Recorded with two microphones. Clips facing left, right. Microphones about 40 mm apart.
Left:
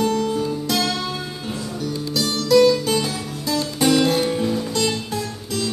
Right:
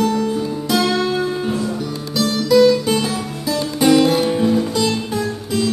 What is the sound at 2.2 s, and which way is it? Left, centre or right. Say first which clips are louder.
Music: right 3 dB; centre.